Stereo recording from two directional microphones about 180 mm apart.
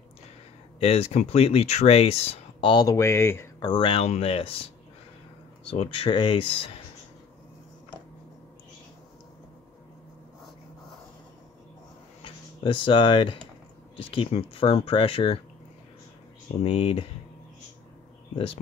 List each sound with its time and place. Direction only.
0.7 s speech: 35° left (ahead or behind); by 3.6 s 15° left (ahead or behind)
3.6 s speech: 30° left (ahead or behind)
5.7 s speech: 30° left (ahead or behind)
12.2 s speech: 30° left (ahead or behind)
16.6 s speech: 35° left (ahead or behind)